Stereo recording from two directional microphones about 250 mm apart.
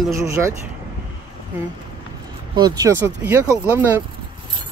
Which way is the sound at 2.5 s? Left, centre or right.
Centre.